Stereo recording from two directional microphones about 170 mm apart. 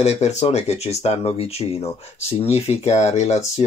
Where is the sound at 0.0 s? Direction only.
40° left (ahead or behind).